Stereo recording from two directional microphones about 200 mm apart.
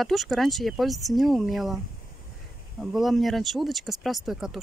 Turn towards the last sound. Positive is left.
turn(degrees=0)  # may be behind; listen again after turning